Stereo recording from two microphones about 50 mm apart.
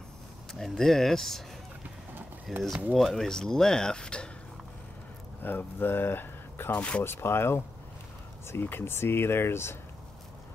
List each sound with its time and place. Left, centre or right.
0.6 s speech: centre
2.5 s speech: centre
5.4 s speech: left
6.7 s speech: left
7.0 s speech: left
8.7 s speech: left